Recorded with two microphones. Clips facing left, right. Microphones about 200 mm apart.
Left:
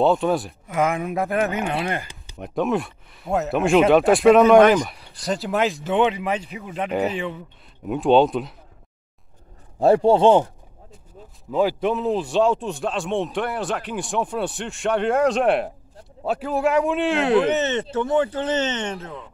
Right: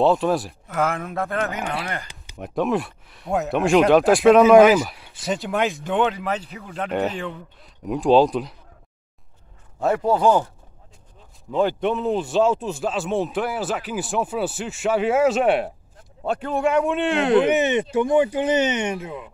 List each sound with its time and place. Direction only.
0.0 s a man's voice: centre (ahead or behind)
1.1 s speech: 20° left (ahead or behind)
2.3 s a man's voice: centre (ahead or behind)
9.8 s speech: 30° left (ahead or behind)
11.5 s a man's voice: centre (ahead or behind)
17.5 s speech: 10° right (ahead or behind)